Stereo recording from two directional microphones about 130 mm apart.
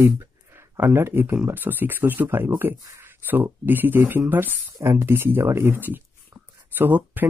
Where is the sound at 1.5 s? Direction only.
15° right (ahead or behind).